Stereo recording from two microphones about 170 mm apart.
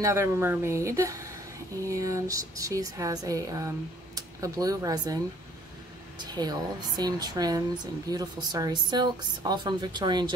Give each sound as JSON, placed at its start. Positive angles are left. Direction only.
{"t": 0.0, "sound": "speech", "side_deg": -15}